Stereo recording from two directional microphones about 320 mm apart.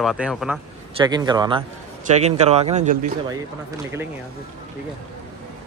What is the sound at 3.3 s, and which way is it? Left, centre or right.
Speech, centre.